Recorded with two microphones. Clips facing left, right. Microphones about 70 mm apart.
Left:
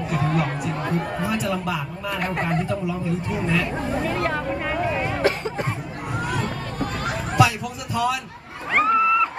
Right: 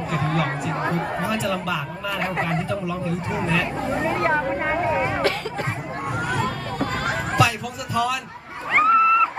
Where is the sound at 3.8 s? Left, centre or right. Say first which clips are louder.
Right 2 dB; right.